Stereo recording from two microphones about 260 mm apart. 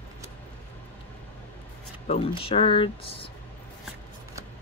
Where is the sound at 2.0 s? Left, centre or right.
Left.